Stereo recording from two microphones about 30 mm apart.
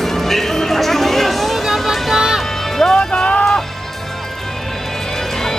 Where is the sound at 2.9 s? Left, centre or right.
Left.